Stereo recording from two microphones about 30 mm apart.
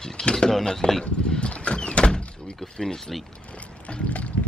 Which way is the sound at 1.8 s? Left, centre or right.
Left.